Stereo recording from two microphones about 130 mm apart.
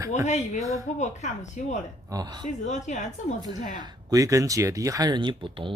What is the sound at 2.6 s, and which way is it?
Speech, 65° left (ahead or behind).